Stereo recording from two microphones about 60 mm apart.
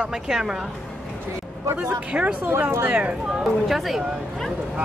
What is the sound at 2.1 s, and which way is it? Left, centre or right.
Speech, centre.